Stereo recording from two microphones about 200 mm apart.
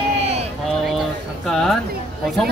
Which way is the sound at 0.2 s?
35° right (ahead or behind).